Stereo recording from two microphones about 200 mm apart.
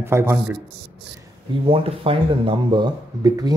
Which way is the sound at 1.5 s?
25° right (ahead or behind).